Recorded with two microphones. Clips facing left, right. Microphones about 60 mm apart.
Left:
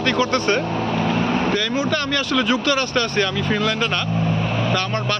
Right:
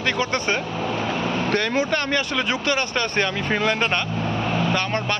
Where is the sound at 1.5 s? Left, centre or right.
Right.